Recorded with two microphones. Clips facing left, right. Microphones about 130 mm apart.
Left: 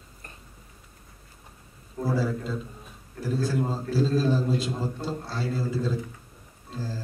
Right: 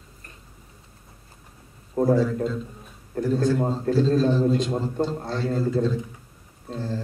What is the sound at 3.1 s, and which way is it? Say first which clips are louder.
Speech: right 9 dB; 50° right (ahead or behind).